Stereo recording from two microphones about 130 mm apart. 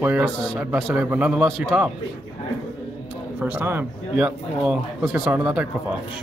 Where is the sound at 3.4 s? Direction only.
15° right (ahead or behind).